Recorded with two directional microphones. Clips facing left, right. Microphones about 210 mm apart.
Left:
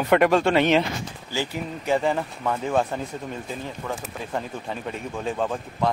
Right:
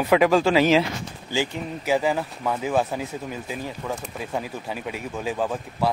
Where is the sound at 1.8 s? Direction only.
5° right (ahead or behind).